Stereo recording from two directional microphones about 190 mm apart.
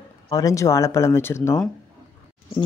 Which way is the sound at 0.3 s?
20° left (ahead or behind).